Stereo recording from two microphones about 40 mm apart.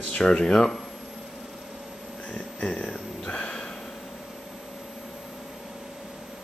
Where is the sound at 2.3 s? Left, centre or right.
Left.